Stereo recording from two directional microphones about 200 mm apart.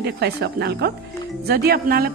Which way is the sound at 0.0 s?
55° right (ahead or behind).